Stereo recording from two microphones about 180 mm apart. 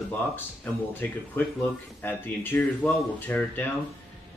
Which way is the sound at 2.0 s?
10° left (ahead or behind).